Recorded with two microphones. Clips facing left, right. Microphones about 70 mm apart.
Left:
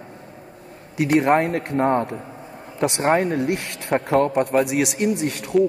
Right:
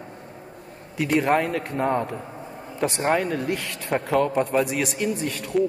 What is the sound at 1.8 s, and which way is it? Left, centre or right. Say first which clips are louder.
Speech: left 4 dB; left.